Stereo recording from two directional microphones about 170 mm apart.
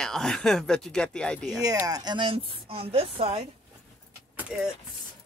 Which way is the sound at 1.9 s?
25° right (ahead or behind).